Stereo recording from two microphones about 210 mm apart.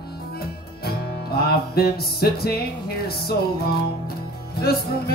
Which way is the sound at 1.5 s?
45° left (ahead or behind).